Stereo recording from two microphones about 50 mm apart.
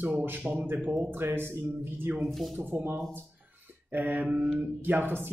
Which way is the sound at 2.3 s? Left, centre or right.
Centre.